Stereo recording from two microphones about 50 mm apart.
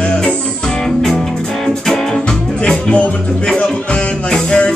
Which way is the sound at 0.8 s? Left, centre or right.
Centre.